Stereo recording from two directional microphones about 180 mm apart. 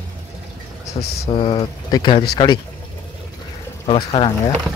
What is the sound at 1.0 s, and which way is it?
Mantra, 30° left (ahead or behind).